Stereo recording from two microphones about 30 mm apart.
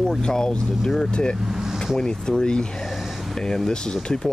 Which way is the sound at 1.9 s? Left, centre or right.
Left.